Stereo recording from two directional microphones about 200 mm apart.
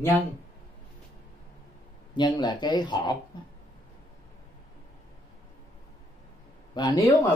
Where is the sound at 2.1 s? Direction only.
20° left (ahead or behind).